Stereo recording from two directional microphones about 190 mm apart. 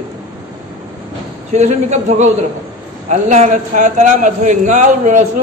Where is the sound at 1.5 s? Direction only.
35° right (ahead or behind).